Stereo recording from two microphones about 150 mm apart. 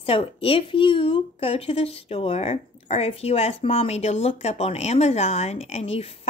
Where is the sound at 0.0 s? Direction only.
40° left (ahead or behind).